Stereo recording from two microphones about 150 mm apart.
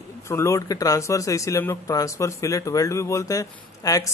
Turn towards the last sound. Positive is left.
turn(degrees=25)  # may be behind; listen again after turning